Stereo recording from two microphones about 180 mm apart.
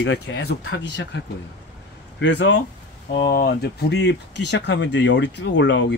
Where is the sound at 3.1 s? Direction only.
60° left (ahead or behind).